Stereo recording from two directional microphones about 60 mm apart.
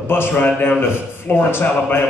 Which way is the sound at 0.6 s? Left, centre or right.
Left.